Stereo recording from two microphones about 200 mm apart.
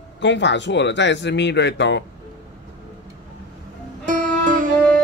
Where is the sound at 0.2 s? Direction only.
65° left (ahead or behind).